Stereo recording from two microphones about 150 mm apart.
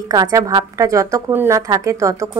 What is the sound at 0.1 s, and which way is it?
A woman's voice, 20° right (ahead or behind).